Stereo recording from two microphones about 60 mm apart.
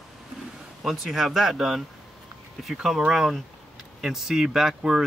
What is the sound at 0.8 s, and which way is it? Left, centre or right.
Speech, centre.